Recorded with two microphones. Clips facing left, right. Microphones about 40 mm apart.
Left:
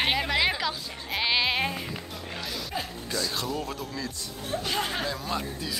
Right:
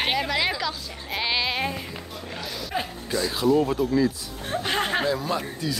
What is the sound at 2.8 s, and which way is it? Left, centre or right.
A man's voice, centre.